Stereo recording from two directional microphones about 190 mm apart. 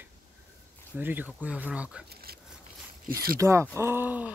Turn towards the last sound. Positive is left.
turn(degrees=-10)  # may be behind; listen again after turning